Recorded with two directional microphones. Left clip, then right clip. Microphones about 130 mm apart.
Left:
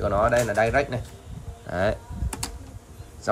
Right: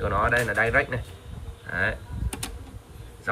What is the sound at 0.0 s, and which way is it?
Speech, 20° left (ahead or behind).